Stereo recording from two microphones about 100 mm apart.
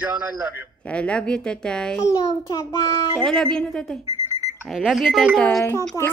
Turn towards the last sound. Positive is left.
turn(degrees=25)  # may be behind; listen again after turning